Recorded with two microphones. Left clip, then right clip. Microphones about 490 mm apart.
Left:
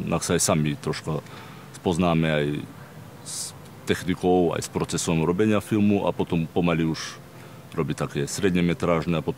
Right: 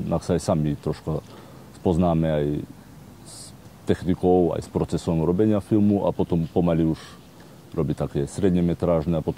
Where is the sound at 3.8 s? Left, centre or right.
Right.